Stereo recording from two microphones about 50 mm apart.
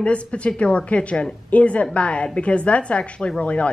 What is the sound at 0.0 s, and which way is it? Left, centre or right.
A woman's voice, left.